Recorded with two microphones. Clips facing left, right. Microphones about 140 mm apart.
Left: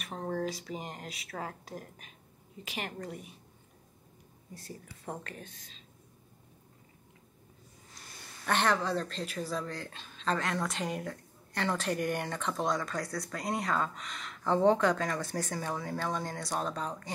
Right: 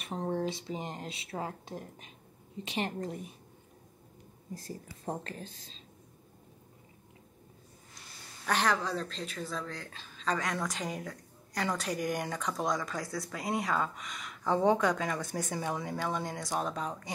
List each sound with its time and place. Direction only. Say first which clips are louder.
0.2 s speech: right 1 dB; 25° right (ahead or behind)
5.0 s a woman's voice: right 3 dB; 30° right (ahead or behind)
8.5 s speech: left 1 dB; centre (ahead or behind)